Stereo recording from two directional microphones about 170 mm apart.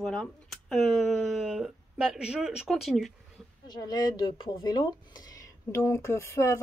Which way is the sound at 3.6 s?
25° left (ahead or behind).